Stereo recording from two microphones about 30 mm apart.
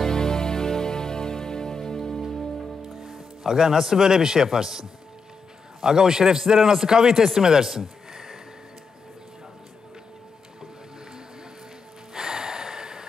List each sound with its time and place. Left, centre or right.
0.0 s music: left
2.6 s music: centre
3.4 s a man's voice: centre
8.1 s music: centre
12.1 s gasp: right